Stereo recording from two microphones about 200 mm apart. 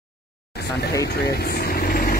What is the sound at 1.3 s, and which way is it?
Vehicle, 50° left (ahead or behind).